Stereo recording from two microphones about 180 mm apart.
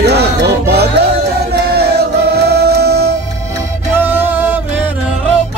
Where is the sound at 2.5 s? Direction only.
65° right (ahead or behind).